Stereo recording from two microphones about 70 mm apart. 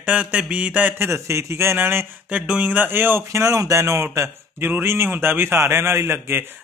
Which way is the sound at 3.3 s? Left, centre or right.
Right.